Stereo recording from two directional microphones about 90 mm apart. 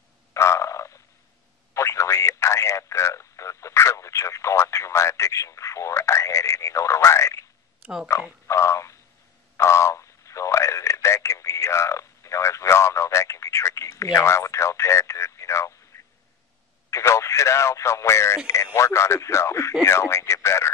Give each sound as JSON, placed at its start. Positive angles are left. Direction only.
{"t": 0.3, "sound": "frog", "side_deg": 35}
{"t": 1.7, "sound": "a sound", "side_deg": 35}
{"t": 8.1, "sound": "speech", "side_deg": 30}
{"t": 8.5, "sound": "a sound", "side_deg": 35}
{"t": 9.6, "sound": "radio", "side_deg": 30}
{"t": 16.9, "sound": "radio", "side_deg": 35}
{"t": 18.5, "sound": "speech", "side_deg": 30}
{"t": 19.8, "sound": "radio", "side_deg": 30}